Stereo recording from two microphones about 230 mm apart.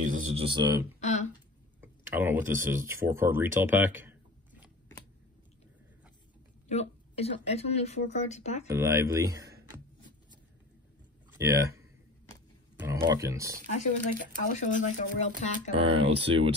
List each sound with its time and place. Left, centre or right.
0.4 s speech: right
0.9 s a sound: left
1.8 s speech: centre
6.7 s speech: left
8.6 s speech: centre
11.3 s speech: centre
12.7 s a sound: centre
13.1 s speech: centre
13.7 s speech: left
15.7 s speech: right